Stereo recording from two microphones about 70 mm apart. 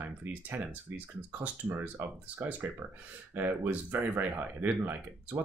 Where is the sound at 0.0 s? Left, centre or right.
Right.